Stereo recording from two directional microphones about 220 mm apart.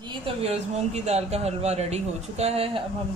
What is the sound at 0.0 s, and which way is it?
Speech, 25° right (ahead or behind).